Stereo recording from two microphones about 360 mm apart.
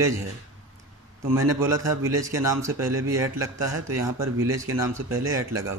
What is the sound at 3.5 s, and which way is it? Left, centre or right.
Speech, right.